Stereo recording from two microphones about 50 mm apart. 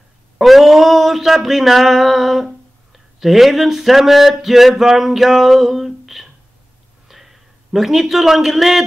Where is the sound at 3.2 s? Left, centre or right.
Centre.